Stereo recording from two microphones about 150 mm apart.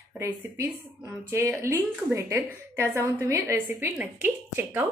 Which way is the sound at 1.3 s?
20° right (ahead or behind).